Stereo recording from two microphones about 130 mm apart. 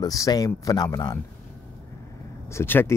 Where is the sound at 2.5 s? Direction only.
20° left (ahead or behind).